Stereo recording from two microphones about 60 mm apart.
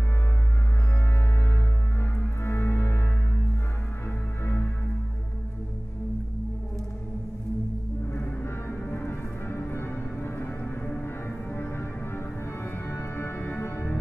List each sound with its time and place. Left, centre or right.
2.0 s music: left
8.2 s music: left
10.6 s music: left
11.0 s music: left